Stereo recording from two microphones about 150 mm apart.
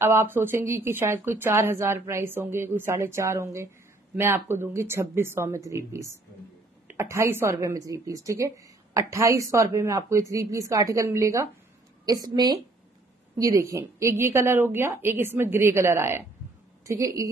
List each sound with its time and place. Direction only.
0.0 s a woman's voice: 15° right (ahead or behind)